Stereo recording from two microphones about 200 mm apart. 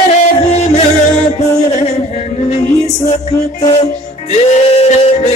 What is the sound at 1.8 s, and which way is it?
Music, 30° left (ahead or behind).